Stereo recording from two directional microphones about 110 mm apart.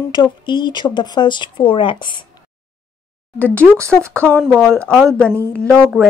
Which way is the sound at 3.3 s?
15° left (ahead or behind).